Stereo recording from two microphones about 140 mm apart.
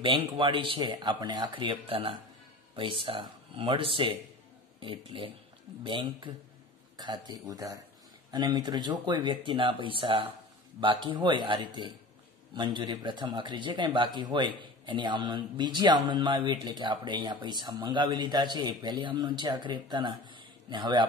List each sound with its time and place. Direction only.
0.0 s a man's voice: 35° right (ahead or behind)